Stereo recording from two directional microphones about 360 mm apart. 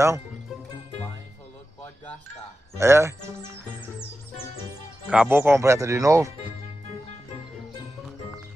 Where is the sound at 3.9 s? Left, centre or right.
Centre.